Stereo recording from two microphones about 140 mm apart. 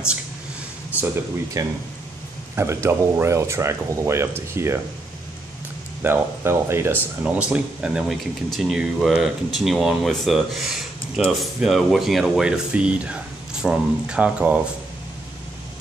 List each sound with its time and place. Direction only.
0.9 s a sound: 10° right (ahead or behind)
1.6 s speech: 25° right (ahead or behind)
6.0 s speech: 15° right (ahead or behind)